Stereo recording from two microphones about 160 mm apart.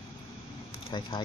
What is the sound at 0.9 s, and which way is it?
Speech, 30° left (ahead or behind).